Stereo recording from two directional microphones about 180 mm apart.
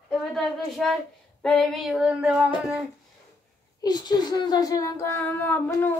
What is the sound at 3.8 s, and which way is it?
Speech, 20° left (ahead or behind).